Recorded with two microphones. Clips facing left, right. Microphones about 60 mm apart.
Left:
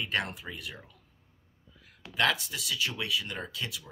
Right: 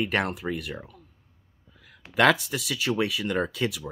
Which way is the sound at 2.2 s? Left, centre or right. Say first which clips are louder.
Right 8 dB; right.